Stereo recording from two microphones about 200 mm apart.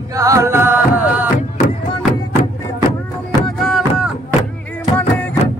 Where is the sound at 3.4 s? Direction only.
Centre (ahead or behind).